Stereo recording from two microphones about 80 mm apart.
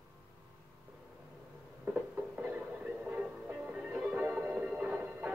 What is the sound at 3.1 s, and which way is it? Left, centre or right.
Music, centre.